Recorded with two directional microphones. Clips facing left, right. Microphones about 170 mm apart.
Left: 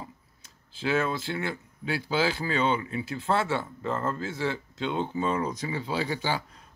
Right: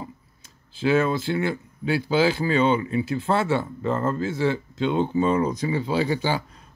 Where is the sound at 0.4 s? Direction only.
5° right (ahead or behind).